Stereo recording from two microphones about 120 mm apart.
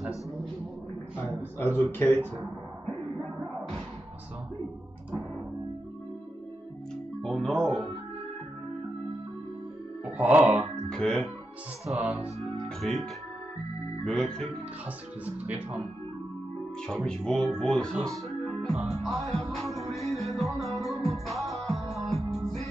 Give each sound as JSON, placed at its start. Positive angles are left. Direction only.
{"t": 1.1, "sound": "a sound", "side_deg": 20}
{"t": 7.2, "sound": "music", "side_deg": 5}
{"t": 10.1, "sound": "speech", "side_deg": -10}
{"t": 10.9, "sound": "speech", "side_deg": 5}
{"t": 12.0, "sound": "speech", "side_deg": -10}
{"t": 12.6, "sound": "speech", "side_deg": 5}
{"t": 15.2, "sound": "speech", "side_deg": -10}
{"t": 16.8, "sound": "speech", "side_deg": 5}
{"t": 18.3, "sound": "music", "side_deg": 0}